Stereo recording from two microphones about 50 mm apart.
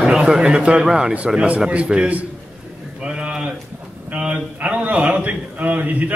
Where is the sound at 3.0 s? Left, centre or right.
Right.